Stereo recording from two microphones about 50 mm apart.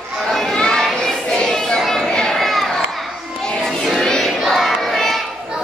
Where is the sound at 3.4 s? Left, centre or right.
Centre.